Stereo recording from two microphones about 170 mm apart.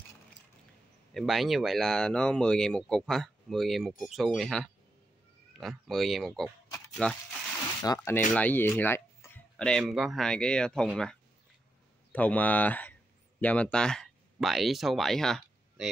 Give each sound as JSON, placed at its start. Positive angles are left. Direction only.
{"t": 1.1, "sound": "speech", "side_deg": 0}
{"t": 7.8, "sound": "speech", "side_deg": 20}
{"t": 12.1, "sound": "speech", "side_deg": 10}